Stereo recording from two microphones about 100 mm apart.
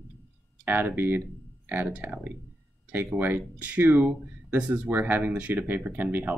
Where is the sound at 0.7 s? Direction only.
20° right (ahead or behind).